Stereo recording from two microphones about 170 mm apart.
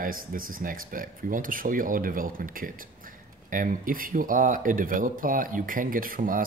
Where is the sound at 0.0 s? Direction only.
55° right (ahead or behind).